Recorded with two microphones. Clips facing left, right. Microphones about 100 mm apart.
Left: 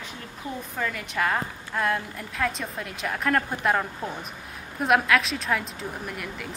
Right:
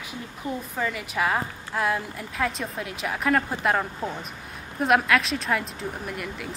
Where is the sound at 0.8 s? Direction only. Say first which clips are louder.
Even; 5° right (ahead or behind).